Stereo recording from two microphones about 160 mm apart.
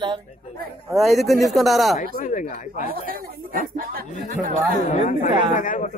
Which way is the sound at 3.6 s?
60° right (ahead or behind).